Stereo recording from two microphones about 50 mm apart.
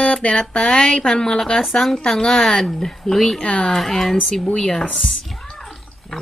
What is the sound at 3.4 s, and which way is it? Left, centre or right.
Speech, left.